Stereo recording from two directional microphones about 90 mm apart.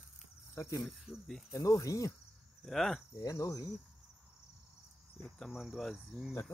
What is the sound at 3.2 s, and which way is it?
Speech, 40° left (ahead or behind).